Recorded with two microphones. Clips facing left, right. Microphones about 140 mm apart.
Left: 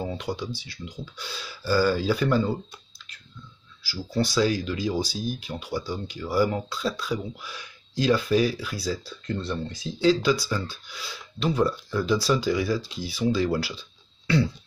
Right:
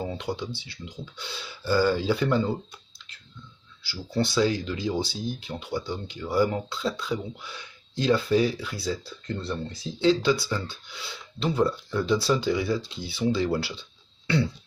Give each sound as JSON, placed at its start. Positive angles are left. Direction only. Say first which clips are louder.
{"t": 0.2, "sound": "speech", "louder": "even", "side_deg": -25}
{"t": 3.8, "sound": "speech", "louder": "left 1 dB", "side_deg": -25}